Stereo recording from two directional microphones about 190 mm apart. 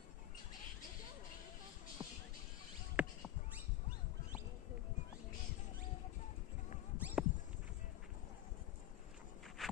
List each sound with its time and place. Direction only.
2.0 s music: 25° right (ahead or behind)
3.0 s a sound: 5° right (ahead or behind)
7.0 s horse: 10° right (ahead or behind)
9.6 s walk: centre (ahead or behind)